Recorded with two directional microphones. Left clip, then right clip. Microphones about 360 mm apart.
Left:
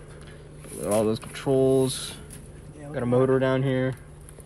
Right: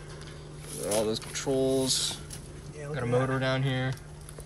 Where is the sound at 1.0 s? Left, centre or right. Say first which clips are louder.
Left 4 dB; centre.